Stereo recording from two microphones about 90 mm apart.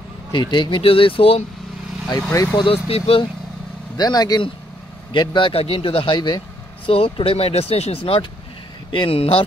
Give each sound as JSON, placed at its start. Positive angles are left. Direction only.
{"t": 0.3, "sound": "speech", "side_deg": 55}
{"t": 2.5, "sound": "speech", "side_deg": 80}
{"t": 3.9, "sound": "speech", "side_deg": 50}
{"t": 5.1, "sound": "speech", "side_deg": 60}
{"t": 6.9, "sound": "speech", "side_deg": 90}
{"t": 8.9, "sound": "speech", "side_deg": 75}